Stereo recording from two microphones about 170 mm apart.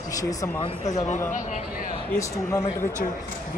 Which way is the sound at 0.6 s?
45° left (ahead or behind).